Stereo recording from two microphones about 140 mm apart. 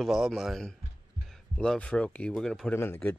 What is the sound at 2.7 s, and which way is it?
Speech, 15° left (ahead or behind).